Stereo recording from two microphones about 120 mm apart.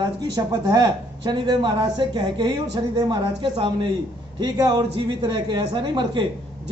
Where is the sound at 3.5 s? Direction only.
50° right (ahead or behind).